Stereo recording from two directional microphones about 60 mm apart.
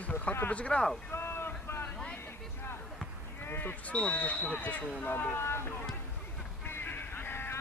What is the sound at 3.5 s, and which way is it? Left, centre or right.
Smoke detector, left.